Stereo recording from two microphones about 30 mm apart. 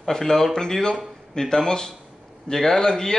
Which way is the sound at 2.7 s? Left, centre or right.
Left.